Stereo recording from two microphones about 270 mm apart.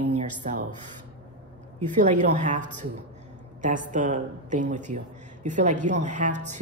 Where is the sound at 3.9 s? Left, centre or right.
Right.